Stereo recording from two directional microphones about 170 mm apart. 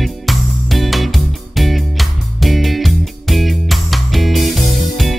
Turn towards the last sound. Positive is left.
turn(degrees=0)  # may be behind; listen again after turning